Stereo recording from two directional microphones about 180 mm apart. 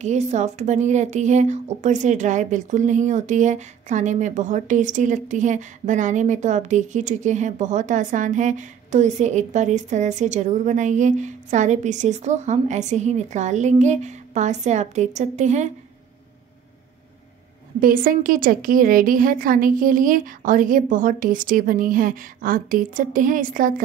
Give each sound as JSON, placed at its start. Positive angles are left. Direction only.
{"t": 0.0, "sound": "speech", "side_deg": -40}
{"t": 17.7, "sound": "a woman's voice", "side_deg": -50}